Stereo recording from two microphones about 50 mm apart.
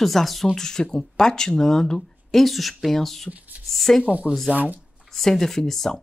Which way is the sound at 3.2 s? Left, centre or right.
Right.